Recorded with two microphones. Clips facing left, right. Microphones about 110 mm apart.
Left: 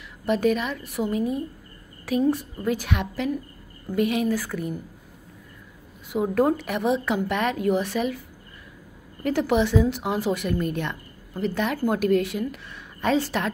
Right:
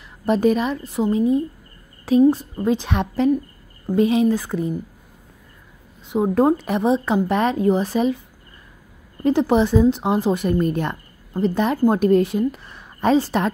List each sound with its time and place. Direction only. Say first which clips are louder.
0.2 s a woman's voice: right 4 dB; 35° right (ahead or behind)
6.0 s speech: right 4 dB; 30° right (ahead or behind)
9.2 s speech: right 5 dB; 30° right (ahead or behind)